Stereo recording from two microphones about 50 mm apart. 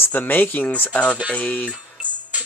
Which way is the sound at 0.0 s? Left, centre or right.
Left.